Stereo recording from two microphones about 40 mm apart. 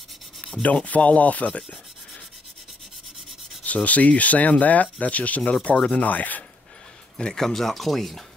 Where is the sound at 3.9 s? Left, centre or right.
Left.